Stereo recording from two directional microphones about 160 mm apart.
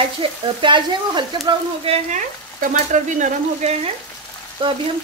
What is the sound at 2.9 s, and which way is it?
Frying, 45° right (ahead or behind).